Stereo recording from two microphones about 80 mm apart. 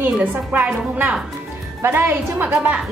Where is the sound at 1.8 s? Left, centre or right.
Right.